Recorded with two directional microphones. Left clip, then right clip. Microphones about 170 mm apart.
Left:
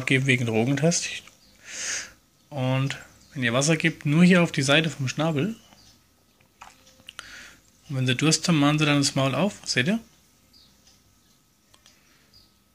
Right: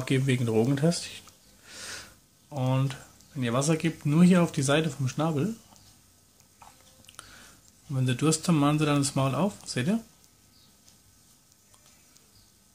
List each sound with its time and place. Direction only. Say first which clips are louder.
0.0 s speech: left 6 dB; 10° right (ahead or behind)
2.5 s speech: left 3 dB; 10° right (ahead or behind)
7.1 s a sound: left 8 dB; 10° right (ahead or behind)
7.9 s speech: left 4 dB; 10° right (ahead or behind)